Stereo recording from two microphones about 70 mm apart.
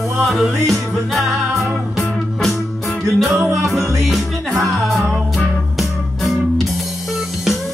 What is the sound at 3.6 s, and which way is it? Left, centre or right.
Music, centre.